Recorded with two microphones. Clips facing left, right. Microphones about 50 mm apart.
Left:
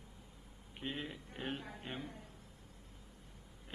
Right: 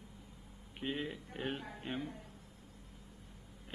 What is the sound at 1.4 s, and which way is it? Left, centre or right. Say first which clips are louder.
Speech: right 2 dB; centre.